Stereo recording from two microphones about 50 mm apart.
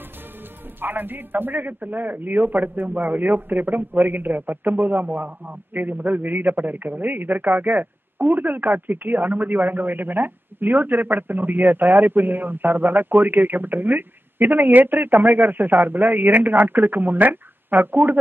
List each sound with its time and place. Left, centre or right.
0.7 s a man's voice: right